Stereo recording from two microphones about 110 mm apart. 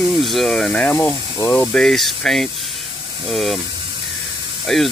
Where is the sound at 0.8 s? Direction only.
20° left (ahead or behind).